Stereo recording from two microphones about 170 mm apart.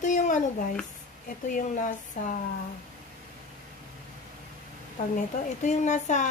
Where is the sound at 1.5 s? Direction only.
50° left (ahead or behind).